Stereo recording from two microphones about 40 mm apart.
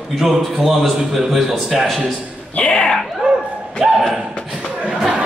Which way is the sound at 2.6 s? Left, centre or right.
Centre.